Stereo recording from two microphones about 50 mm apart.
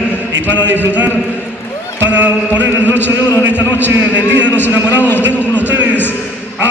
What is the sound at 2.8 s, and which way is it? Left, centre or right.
A man's voice, left.